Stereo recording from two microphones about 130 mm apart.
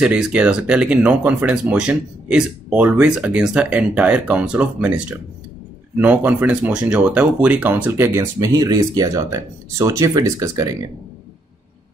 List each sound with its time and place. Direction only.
0.0 s speech: 5° right (ahead or behind); by 10.9 s 25° right (ahead or behind)